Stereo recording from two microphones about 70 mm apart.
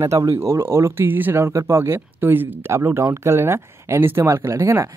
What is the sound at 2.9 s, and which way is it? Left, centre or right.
Speech, right.